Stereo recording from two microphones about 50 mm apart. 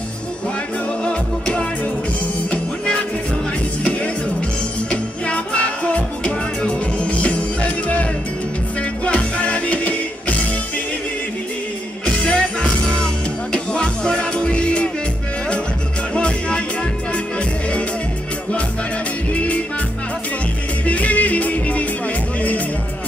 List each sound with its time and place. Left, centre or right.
1.0 s music: left
4.9 s music: left
12.2 s music: centre
16.2 s music: centre
19.3 s music: left
20.8 s music: left